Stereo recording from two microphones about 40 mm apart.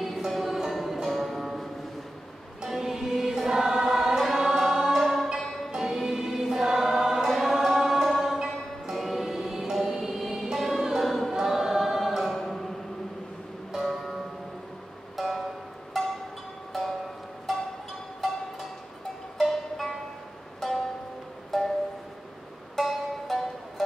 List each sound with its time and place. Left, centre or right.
0.0 s music: centre
2.6 s music: centre
5.0 s music: centre
11.4 s choir: centre
12.4 s music: centre
13.7 s music: centre
19.3 s music: centre
21.5 s music: centre
22.8 s music: centre